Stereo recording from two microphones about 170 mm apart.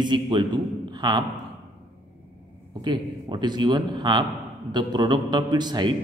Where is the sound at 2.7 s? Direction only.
25° right (ahead or behind).